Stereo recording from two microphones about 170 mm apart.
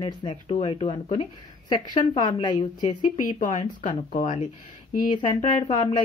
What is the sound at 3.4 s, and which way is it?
Speech, 45° left (ahead or behind).